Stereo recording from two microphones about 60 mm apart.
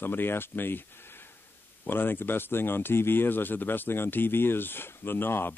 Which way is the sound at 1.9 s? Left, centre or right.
Left.